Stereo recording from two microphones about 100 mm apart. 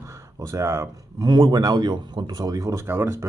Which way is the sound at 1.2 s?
45° right (ahead or behind).